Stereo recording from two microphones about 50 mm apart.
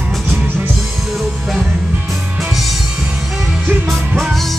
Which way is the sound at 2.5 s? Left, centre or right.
Centre.